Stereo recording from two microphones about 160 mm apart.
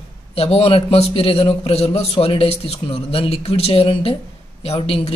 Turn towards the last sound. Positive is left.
turn(degrees=35)  # may be behind; listen again after turning